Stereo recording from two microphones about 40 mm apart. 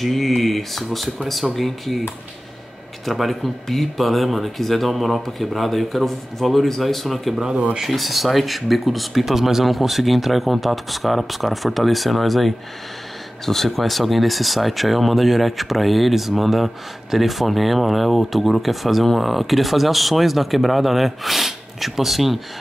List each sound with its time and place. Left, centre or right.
0.0 s speech: centre
3.1 s speech: centre
7.3 s speech: centre
7.9 s speech: centre